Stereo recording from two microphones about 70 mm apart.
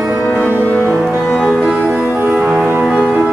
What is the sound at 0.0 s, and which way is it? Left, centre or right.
Music, centre.